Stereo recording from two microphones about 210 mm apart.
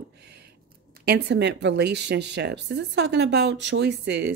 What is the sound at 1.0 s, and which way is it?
Speech, 50° right (ahead or behind).